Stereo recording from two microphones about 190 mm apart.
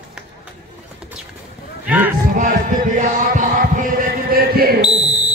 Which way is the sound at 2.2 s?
45° right (ahead or behind).